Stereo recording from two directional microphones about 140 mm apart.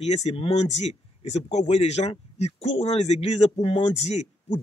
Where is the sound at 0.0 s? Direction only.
50° left (ahead or behind).